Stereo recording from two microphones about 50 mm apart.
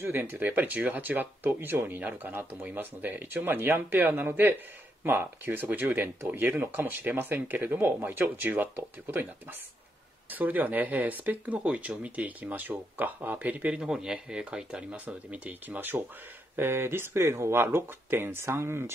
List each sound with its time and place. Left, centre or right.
0.0 s speech: right
2.0 s speech: right
10.3 s speech: right
13.7 s speech: centre
16.5 s speech: right
17.2 s speech: right
17.6 s speech: right